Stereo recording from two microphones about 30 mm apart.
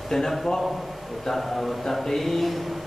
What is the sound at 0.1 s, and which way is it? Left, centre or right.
A man's voice, centre.